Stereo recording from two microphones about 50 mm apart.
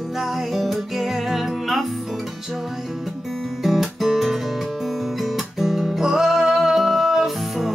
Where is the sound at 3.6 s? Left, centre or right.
Centre.